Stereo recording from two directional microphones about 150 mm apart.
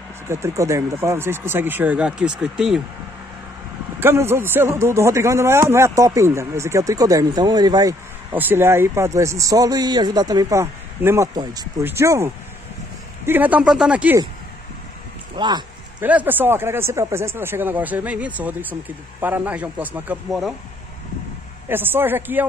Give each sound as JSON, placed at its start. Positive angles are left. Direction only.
{"t": 0.3, "sound": "speech", "side_deg": -20}
{"t": 4.0, "sound": "a man's voice", "side_deg": -15}
{"t": 8.3, "sound": "a man's voice", "side_deg": -15}
{"t": 15.3, "sound": "speech", "side_deg": -30}
{"t": 16.0, "sound": "speech", "side_deg": -10}
{"t": 20.2, "sound": "speech", "side_deg": 0}
{"t": 21.6, "sound": "speech", "side_deg": -15}